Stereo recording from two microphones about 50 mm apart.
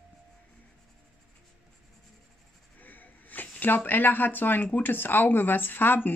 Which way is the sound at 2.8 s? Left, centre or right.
Left.